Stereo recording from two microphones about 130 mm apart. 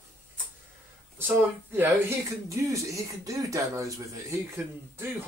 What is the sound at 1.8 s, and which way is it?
Speech, 20° right (ahead or behind).